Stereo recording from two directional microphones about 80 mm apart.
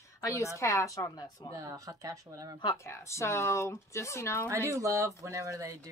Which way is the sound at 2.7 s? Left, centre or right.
Left.